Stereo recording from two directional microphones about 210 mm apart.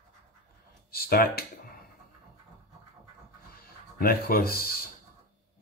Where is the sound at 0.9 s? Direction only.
45° left (ahead or behind).